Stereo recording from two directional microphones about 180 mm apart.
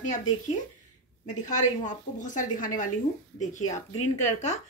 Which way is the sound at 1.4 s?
45° left (ahead or behind).